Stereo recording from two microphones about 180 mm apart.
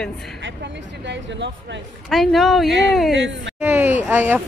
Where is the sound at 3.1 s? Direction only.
90° right.